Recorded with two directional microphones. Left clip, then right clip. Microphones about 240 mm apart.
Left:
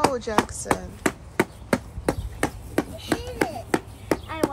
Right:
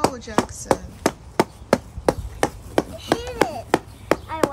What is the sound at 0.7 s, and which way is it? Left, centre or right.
Speech, right.